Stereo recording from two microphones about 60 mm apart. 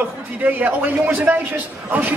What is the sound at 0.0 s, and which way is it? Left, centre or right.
Speech, right.